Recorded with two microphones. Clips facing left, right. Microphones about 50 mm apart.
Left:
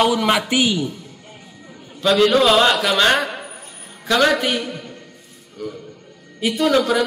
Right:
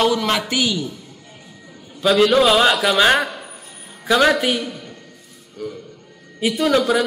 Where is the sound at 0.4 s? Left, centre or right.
Left.